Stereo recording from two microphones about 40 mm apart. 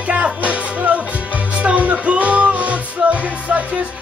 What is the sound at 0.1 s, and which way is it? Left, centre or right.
Music, right.